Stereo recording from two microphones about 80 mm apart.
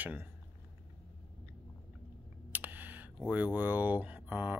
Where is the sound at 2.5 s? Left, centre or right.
Right.